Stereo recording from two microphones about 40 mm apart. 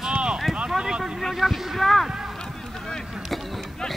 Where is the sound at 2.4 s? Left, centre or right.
Centre.